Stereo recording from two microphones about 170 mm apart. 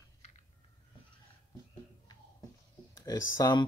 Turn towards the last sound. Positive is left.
turn(degrees=20)  # may be behind; listen again after turning